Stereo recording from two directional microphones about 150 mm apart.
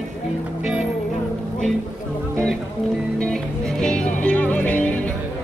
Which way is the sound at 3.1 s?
5° left (ahead or behind).